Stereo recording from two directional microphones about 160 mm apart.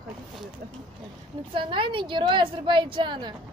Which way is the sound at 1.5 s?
30° right (ahead or behind).